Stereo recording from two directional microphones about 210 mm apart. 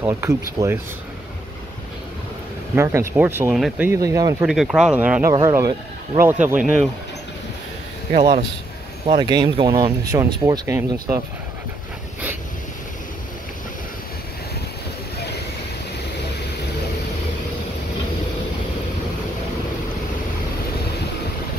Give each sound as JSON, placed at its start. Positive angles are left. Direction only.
{"t": 0.0, "sound": "speech", "side_deg": -15}
{"t": 2.7, "sound": "speech", "side_deg": -10}
{"t": 4.5, "sound": "speech", "side_deg": -5}
{"t": 8.1, "sound": "speech", "side_deg": -25}